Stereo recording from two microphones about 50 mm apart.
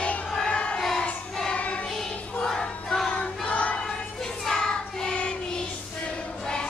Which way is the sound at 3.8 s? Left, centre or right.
Centre.